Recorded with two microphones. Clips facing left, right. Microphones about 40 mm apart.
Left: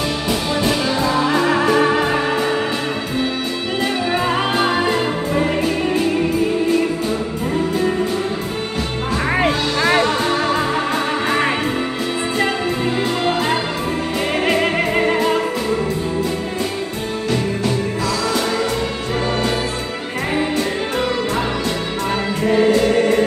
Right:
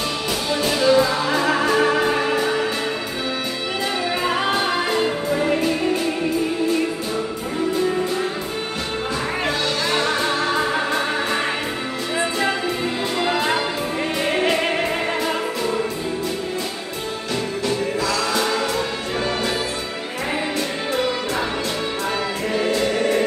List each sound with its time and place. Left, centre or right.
0.7 s music: centre
4.3 s music: centre
9.4 s music: left
15.0 s music: centre
22.5 s music: centre